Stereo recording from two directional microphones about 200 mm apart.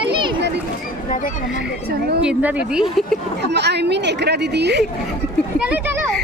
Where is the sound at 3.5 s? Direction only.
55° right (ahead or behind).